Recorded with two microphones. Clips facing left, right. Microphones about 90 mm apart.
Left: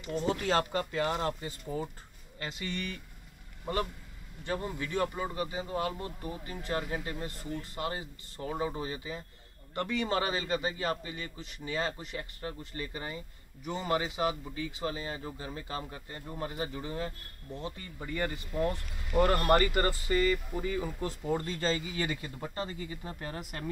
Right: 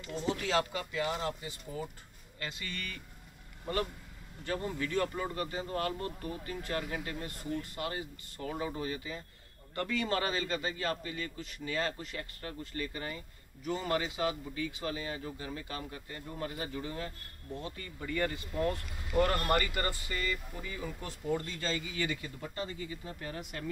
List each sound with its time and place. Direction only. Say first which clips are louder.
0.1 s speech: left 3 dB; 45° left (ahead or behind)
2.3 s a man's voice: left 4 dB; 25° left (ahead or behind)